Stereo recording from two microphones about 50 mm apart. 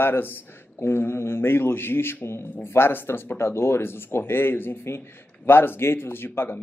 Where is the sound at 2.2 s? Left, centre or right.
Left.